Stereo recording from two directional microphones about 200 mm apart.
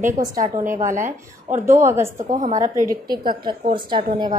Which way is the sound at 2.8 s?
15° right (ahead or behind).